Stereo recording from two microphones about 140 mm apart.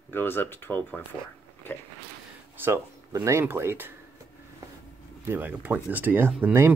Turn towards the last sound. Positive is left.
turn(degrees=-15)  # may be behind; listen again after turning